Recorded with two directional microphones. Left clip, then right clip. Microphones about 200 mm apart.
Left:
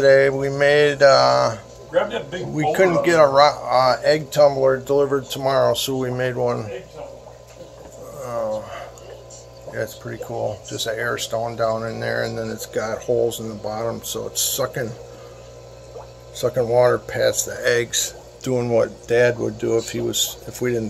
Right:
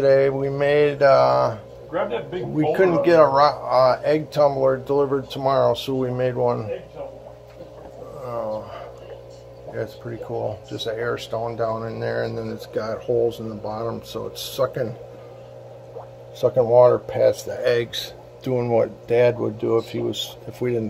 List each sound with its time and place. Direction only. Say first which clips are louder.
0.0 s speech: left 3 dB; centre (ahead or behind)
8.2 s a sound: left 3 dB; 5° left (ahead or behind)
9.8 s speech: left 2 dB; 5° left (ahead or behind)
16.3 s speech: right 2 dB; 5° left (ahead or behind)